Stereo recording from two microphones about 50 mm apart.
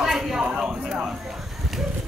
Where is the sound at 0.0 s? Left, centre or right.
Centre.